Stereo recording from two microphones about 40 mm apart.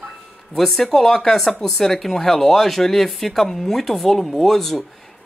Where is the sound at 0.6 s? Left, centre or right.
Centre.